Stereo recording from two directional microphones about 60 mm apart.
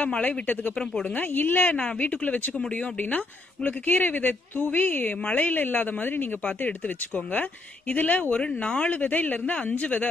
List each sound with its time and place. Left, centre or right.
0.0 s speech: left
7.9 s speech: left